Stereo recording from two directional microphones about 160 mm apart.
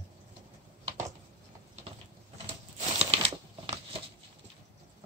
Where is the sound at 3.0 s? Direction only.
35° right (ahead or behind).